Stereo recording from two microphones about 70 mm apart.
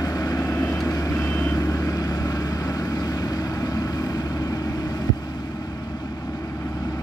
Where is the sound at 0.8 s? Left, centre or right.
Left.